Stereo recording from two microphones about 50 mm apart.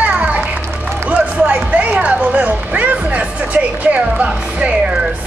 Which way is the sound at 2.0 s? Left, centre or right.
Right.